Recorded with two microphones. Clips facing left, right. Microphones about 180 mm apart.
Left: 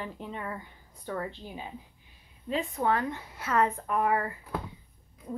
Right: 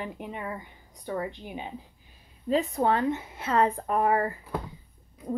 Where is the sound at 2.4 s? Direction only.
35° right (ahead or behind).